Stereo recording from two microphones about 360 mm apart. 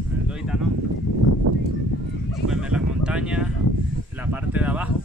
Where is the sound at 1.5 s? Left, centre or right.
Right.